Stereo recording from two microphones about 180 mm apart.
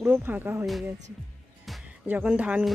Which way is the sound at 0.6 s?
Centre (ahead or behind).